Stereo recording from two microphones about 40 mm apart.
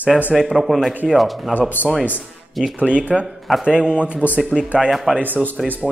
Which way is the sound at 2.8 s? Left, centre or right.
Right.